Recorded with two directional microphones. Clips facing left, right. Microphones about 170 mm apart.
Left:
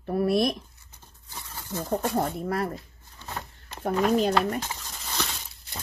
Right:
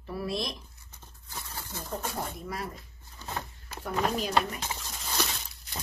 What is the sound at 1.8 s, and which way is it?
Speech, 55° left (ahead or behind).